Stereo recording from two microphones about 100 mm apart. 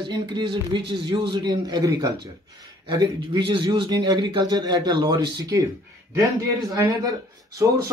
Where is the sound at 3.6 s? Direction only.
40° right (ahead or behind).